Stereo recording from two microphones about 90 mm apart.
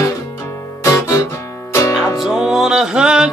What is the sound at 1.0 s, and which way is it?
Music, 30° left (ahead or behind).